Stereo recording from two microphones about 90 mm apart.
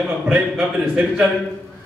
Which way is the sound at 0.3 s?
10° right (ahead or behind).